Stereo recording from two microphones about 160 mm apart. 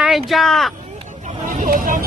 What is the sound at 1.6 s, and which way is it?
Speech, 60° right (ahead or behind).